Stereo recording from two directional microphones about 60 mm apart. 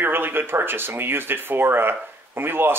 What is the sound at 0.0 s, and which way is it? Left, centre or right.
Speech, right.